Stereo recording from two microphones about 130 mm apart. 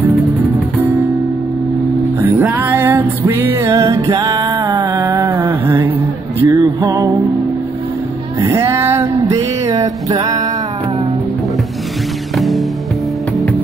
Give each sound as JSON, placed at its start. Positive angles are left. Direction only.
{"t": 2.2, "sound": "music", "side_deg": -15}
{"t": 8.5, "sound": "music", "side_deg": -20}
{"t": 12.4, "sound": "music", "side_deg": 0}